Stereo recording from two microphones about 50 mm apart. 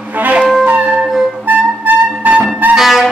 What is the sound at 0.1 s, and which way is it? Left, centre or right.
Music, right.